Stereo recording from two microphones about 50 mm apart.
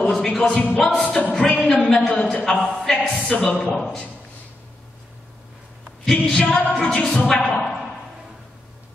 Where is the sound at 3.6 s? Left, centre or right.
Centre.